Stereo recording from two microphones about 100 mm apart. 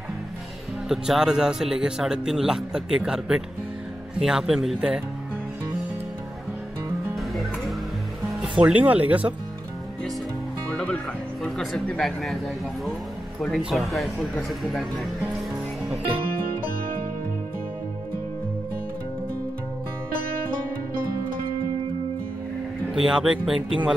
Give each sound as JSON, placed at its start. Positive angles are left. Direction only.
{"t": 0.8, "sound": "speech", "side_deg": -5}
{"t": 7.2, "sound": "music", "side_deg": 0}
{"t": 8.6, "sound": "speech", "side_deg": -15}
{"t": 10.7, "sound": "music", "side_deg": 10}
{"t": 11.4, "sound": "speech", "side_deg": 5}
{"t": 13.6, "sound": "speech", "side_deg": 0}
{"t": 22.8, "sound": "speech", "side_deg": -5}